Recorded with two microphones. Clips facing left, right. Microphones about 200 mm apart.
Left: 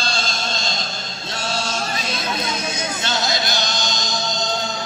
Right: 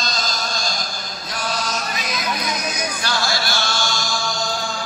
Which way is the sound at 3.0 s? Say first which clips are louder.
Left 1 dB; 20° left (ahead or behind).